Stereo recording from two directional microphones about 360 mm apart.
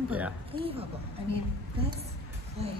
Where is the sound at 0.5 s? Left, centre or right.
Centre.